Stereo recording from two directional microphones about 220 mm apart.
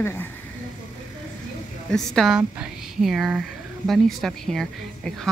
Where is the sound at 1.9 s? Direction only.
Centre (ahead or behind).